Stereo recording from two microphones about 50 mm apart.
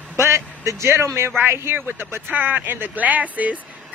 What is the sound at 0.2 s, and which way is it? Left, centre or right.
Speech, right.